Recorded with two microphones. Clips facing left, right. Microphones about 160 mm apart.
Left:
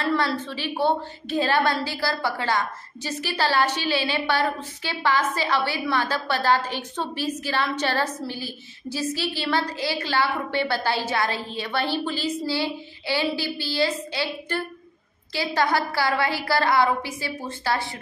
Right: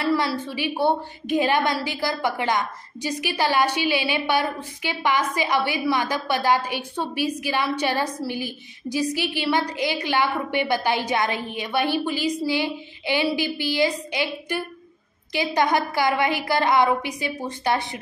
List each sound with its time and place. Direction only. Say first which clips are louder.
0.0 s a woman's voice: right 1 dB; 10° right (ahead or behind)